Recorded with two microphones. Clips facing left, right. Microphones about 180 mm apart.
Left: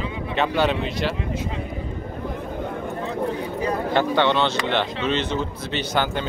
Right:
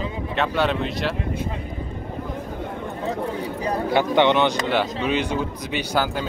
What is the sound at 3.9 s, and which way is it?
Speech, 15° right (ahead or behind).